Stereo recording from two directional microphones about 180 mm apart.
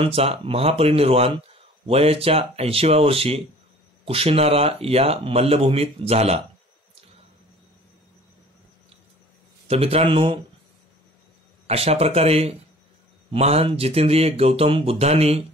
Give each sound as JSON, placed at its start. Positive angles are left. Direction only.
{"t": 0.0, "sound": "speech", "side_deg": -30}
{"t": 9.7, "sound": "speech", "side_deg": -35}
{"t": 11.6, "sound": "speech", "side_deg": -35}